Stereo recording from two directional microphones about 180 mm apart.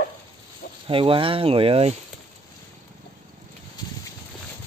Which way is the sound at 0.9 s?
30° right (ahead or behind).